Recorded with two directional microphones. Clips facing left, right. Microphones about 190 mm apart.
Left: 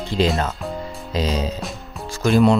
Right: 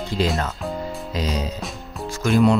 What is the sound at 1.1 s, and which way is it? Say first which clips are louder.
Speech: left 4 dB; 30° left (ahead or behind).